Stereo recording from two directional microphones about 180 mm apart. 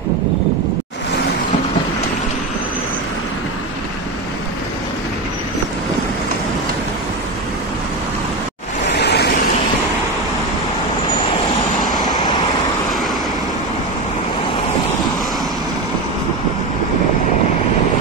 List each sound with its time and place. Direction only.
9.0 s vehicle: 65° left (ahead or behind)